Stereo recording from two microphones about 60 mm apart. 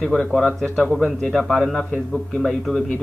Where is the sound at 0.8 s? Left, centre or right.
Centre.